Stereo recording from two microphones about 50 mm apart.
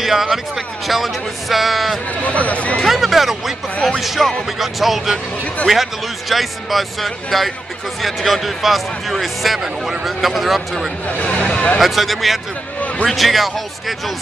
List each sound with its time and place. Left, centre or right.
0.0 s music: centre
2.0 s speech: left
2.8 s a sound: centre
4.0 s speech: centre
11.1 s speech: left
11.8 s speech: centre